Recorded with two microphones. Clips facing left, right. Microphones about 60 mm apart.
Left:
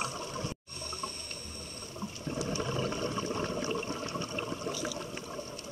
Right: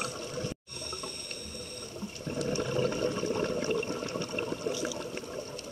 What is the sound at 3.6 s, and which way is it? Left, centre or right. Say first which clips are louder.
Toilet flush: right 3 dB; right.